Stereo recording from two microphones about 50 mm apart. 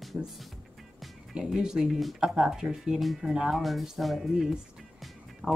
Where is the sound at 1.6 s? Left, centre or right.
Centre.